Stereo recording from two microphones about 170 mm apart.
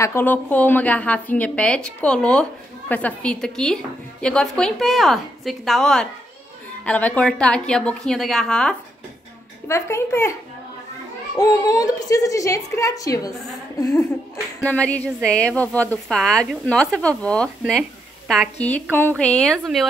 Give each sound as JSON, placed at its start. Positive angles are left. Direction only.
{"t": 0.0, "sound": "a woman's voice", "side_deg": 15}
{"t": 9.7, "sound": "a woman's voice", "side_deg": 15}
{"t": 11.3, "sound": "a woman's voice", "side_deg": 20}
{"t": 14.6, "sound": "a woman's voice", "side_deg": 5}